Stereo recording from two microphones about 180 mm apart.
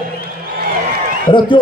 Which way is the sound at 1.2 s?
25° left (ahead or behind).